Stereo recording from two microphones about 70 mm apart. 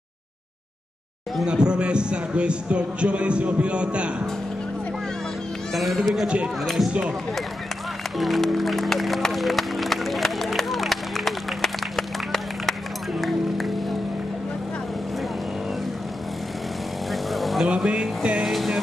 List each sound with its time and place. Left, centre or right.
1.4 s a man's voice: centre
5.7 s speech: centre
6.2 s a man's voice: centre
6.6 s speech: centre
8.2 s music: centre
17.1 s vehicle: centre
17.6 s music: centre